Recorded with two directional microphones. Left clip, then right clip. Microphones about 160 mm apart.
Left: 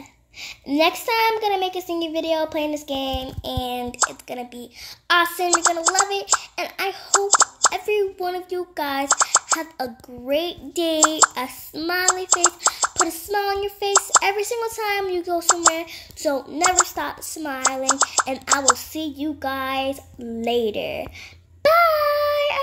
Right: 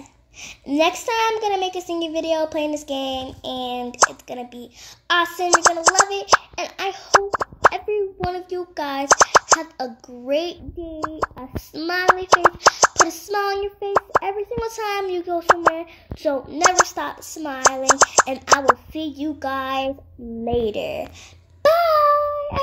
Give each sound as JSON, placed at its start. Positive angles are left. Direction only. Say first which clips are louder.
{"t": 0.4, "sound": "a woman's voice", "louder": "even", "side_deg": 0}
{"t": 7.2, "sound": "plop", "louder": "right 1 dB", "side_deg": 20}
{"t": 7.7, "sound": "a woman's voice", "louder": "left 1 dB", "side_deg": 5}
{"t": 10.8, "sound": "speech", "louder": "left 9 dB", "side_deg": 20}
{"t": 11.4, "sound": "a woman's voice", "louder": "even", "side_deg": 5}
{"t": 14.2, "sound": "a woman's voice", "louder": "left 3 dB", "side_deg": 10}
{"t": 21.6, "sound": "child singing", "louder": "even", "side_deg": 0}
{"t": 22.2, "sound": "child singing", "louder": "left 3 dB", "side_deg": 70}